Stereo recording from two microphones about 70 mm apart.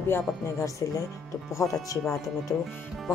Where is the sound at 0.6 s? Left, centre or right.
Left.